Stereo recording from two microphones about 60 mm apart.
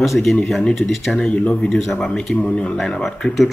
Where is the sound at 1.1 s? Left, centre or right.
Centre.